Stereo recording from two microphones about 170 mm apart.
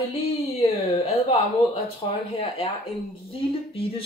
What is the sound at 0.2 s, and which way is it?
Speech, 35° left (ahead or behind).